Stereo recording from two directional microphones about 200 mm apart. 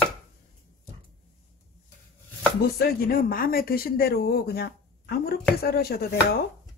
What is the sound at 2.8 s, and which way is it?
Speech, 50° left (ahead or behind).